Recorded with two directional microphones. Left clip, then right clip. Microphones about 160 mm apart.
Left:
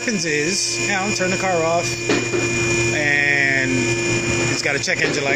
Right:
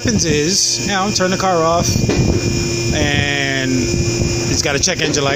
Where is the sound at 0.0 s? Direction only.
55° right (ahead or behind).